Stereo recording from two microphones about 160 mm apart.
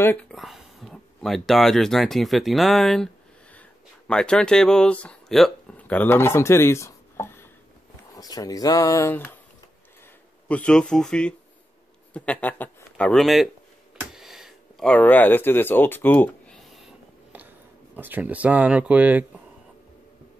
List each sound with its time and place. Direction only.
0.0 s speech: 10° left (ahead or behind)
4.1 s speech: 5° left (ahead or behind)
10.5 s speech: 5° left (ahead or behind)
14.1 s a sound: centre (ahead or behind)
17.9 s speech: 10° right (ahead or behind)